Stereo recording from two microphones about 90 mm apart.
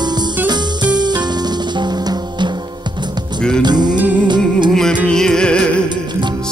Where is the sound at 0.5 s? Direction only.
55° right (ahead or behind).